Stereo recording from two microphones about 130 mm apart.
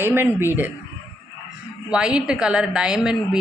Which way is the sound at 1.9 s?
5° right (ahead or behind).